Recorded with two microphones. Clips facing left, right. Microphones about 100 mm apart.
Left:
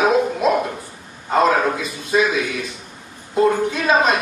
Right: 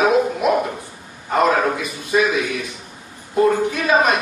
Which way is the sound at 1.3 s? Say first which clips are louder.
Even; 25° left (ahead or behind).